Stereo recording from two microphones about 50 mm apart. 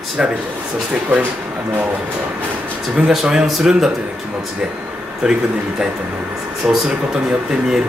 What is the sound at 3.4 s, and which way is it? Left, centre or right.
Speech, centre.